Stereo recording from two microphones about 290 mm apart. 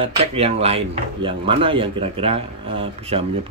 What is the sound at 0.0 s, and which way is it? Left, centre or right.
Speech, centre.